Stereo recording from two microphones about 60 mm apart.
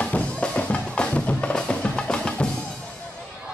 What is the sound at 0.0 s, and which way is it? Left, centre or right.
Music, centre.